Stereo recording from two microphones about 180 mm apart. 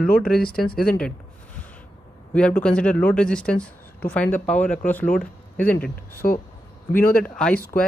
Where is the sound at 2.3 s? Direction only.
5° left (ahead or behind).